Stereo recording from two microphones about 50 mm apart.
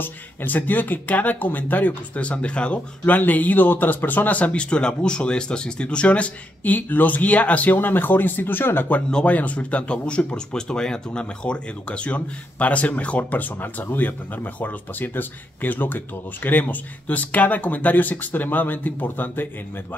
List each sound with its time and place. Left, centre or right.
0.0 s speech: left
2.1 s speech: left
3.2 s speech: left
7.7 s speech: left
9.2 s speech: left